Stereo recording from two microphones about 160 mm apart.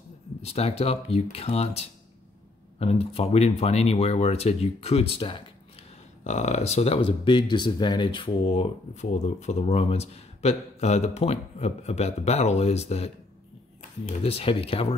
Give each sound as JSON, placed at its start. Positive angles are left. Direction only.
{"t": 0.4, "sound": "speech", "side_deg": 40}
{"t": 6.2, "sound": "speech", "side_deg": 45}
{"t": 14.2, "sound": "speech", "side_deg": 35}